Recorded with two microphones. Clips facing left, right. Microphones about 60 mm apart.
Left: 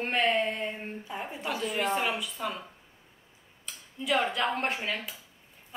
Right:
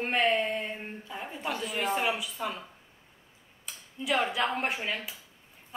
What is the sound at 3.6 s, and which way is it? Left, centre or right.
A woman's voice, centre.